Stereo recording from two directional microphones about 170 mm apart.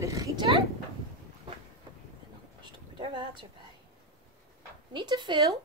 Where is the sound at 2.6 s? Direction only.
25° right (ahead or behind).